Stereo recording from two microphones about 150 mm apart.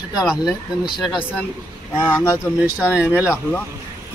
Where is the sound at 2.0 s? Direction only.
15° left (ahead or behind).